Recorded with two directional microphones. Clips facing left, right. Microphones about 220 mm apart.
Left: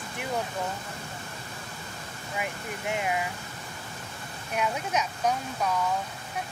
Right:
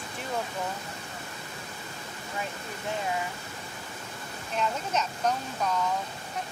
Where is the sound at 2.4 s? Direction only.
15° left (ahead or behind).